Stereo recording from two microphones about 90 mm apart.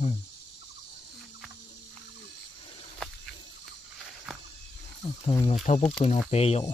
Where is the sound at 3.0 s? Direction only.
10° left (ahead or behind).